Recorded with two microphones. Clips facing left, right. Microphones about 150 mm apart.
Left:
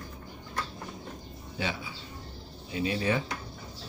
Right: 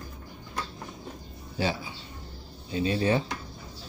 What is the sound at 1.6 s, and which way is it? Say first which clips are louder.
Speech: right 5 dB; 35° right (ahead or behind).